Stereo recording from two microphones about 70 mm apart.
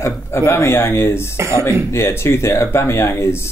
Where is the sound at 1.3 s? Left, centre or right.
Right.